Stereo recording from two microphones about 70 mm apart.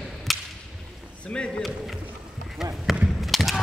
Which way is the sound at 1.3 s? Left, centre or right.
Centre.